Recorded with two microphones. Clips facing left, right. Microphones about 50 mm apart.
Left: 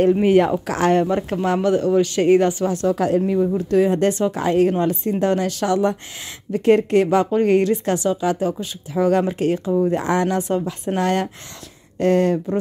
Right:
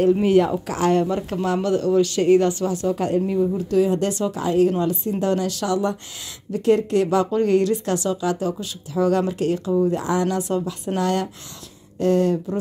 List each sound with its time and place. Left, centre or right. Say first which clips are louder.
0.0 s speech: left 2 dB; left
0.5 s speech: left 2 dB; left
0.9 s speech: left 2 dB; left
2.9 s speech: left 3 dB; left
3.3 s speech: left 2 dB; left
9.8 s speech: left 2 dB; left
12.0 s speech: left 2 dB; left